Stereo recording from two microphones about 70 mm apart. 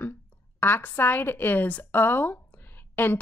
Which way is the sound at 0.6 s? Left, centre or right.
Left.